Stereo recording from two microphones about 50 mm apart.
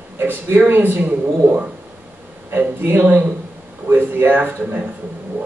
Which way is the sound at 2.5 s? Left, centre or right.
Right.